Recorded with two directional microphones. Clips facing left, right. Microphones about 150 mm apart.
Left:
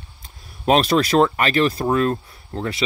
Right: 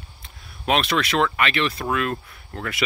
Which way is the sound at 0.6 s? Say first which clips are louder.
Left 5 dB; 40° left (ahead or behind).